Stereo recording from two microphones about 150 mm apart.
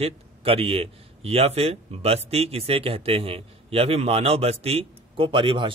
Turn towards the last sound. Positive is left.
turn(degrees=-35)  # may be behind; listen again after turning